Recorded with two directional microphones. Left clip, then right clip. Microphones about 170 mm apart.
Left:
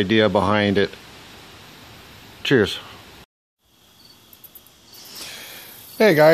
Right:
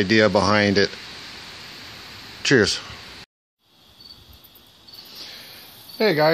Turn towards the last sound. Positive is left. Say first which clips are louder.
# left 5 dB
turn(degrees=55)  # may be behind; listen again after turning